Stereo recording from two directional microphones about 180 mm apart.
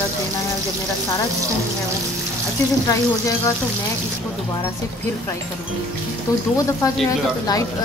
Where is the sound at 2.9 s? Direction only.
15° left (ahead or behind).